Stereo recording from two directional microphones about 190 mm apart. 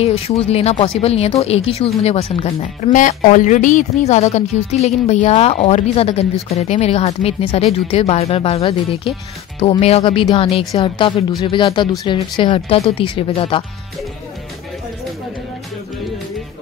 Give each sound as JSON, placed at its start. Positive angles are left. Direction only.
{"t": 0.0, "sound": "speech", "side_deg": 30}